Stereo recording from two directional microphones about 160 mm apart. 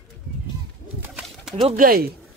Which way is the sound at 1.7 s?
65° right (ahead or behind).